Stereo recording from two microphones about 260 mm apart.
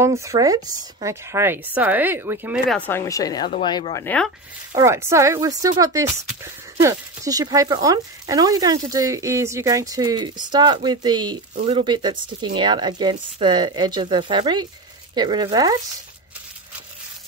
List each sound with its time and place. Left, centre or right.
0.0 s speech: centre
4.7 s speech: centre